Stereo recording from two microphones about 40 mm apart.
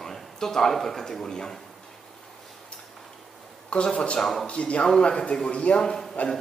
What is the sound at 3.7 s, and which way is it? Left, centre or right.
Speech, left.